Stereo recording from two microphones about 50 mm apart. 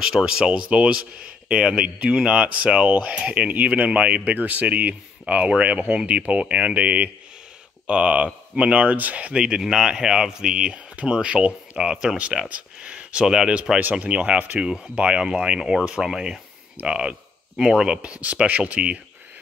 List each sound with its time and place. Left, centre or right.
0.0 s speech: centre